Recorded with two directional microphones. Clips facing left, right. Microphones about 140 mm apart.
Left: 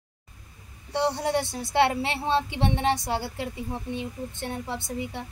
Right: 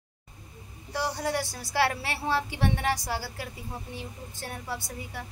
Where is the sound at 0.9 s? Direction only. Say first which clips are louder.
Left 5 dB; 25° left (ahead or behind).